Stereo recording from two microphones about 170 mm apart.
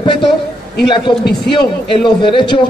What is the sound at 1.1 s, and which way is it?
Speech, 30° left (ahead or behind).